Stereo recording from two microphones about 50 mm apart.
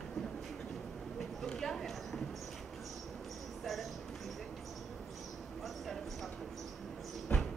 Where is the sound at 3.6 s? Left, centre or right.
Centre.